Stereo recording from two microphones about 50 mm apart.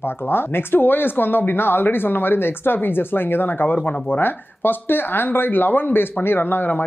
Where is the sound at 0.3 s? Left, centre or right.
Left.